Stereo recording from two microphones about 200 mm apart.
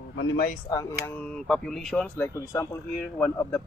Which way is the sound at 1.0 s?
5° left (ahead or behind).